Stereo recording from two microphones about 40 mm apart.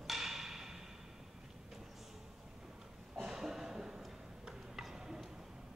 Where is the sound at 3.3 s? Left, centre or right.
Centre.